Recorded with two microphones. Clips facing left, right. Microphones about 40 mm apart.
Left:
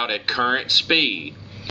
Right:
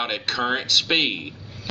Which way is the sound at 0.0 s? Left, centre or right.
Centre.